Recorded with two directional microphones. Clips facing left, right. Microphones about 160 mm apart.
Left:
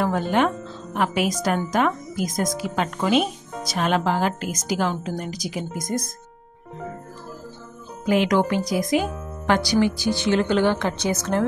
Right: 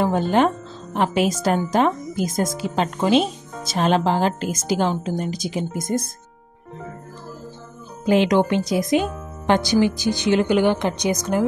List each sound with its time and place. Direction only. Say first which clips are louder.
0.0 s a woman's voice: right 3 dB; 30° right (ahead or behind)
8.0 s a woman's voice: right 3 dB; 30° right (ahead or behind)